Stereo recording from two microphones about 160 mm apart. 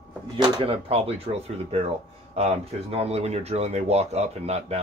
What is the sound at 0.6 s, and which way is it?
Speech, 35° right (ahead or behind).